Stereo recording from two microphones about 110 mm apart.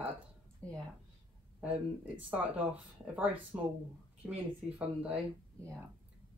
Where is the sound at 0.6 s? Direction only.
10° left (ahead or behind).